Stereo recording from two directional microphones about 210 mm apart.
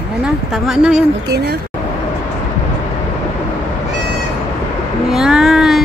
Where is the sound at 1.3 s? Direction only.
50° right (ahead or behind).